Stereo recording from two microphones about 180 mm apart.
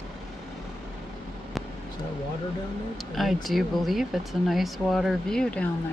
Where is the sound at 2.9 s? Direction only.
Centre (ahead or behind).